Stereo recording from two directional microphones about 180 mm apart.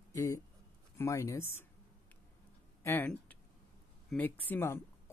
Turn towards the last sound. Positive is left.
turn(degrees=10)  # may be behind; listen again after turning